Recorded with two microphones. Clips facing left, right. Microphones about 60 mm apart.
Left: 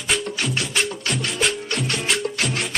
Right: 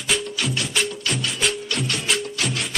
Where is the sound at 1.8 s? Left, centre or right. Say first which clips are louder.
Left 2 dB; left.